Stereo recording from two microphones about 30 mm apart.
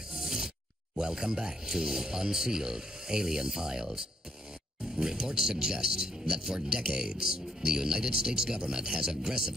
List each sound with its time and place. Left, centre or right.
0.2 s a sound: centre
0.9 s speech: centre
5.0 s speech: right